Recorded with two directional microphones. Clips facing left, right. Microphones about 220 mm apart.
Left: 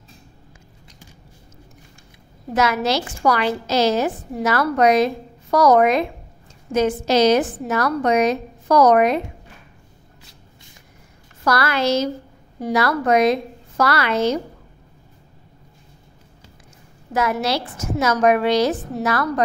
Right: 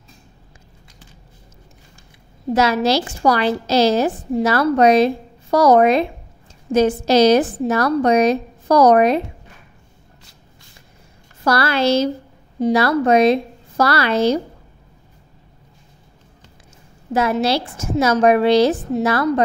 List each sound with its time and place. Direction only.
2.5 s a woman's voice: 30° right (ahead or behind)
11.4 s a woman's voice: 30° right (ahead or behind)
17.1 s a woman's voice: 30° right (ahead or behind)